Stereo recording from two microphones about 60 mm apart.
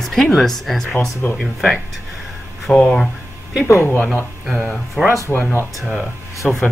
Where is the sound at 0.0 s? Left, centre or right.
Centre.